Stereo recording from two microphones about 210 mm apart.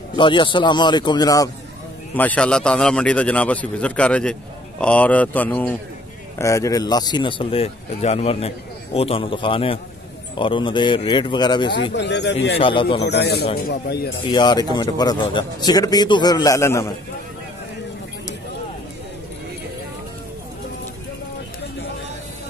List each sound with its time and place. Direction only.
0.1 s a man's voice: 20° left (ahead or behind)
2.1 s a man's voice: 5° left (ahead or behind)
11.9 s speech: 55° left (ahead or behind)
12.5 s a man's voice: 25° left (ahead or behind)
13.1 s speech: 50° left (ahead or behind)
14.2 s a man's voice: 20° left (ahead or behind)